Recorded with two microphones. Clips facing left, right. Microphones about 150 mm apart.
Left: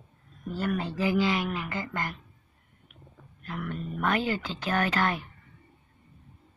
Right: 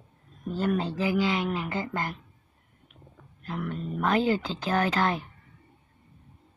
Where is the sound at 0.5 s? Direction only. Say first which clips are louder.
Right 3 dB; 25° right (ahead or behind).